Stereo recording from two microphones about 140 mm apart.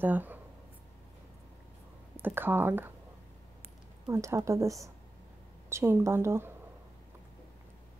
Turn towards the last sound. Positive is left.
turn(degrees=-20)  # may be behind; listen again after turning